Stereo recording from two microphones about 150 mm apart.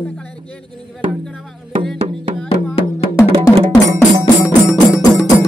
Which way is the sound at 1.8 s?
5° left (ahead or behind).